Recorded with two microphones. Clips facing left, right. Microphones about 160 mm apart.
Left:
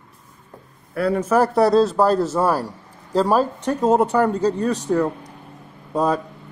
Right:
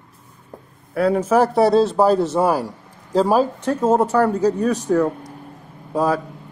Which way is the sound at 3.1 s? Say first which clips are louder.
Right 2 dB; 5° right (ahead or behind).